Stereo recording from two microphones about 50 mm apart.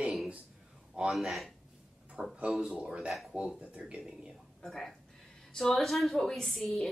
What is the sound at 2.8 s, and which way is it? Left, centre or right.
Speech, centre.